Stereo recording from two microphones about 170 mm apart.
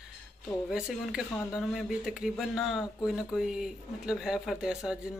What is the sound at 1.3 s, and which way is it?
Speech, 15° left (ahead or behind).